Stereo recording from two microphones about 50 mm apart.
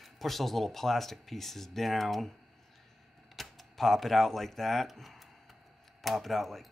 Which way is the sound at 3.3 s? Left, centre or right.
Centre.